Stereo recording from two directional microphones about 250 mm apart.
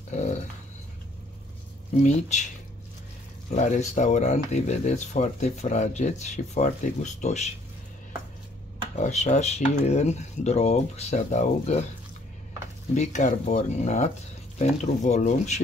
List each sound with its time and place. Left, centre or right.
0.1 s dog: left
2.0 s speech: left
3.4 s speech: left
8.9 s speech: left
12.9 s speech: left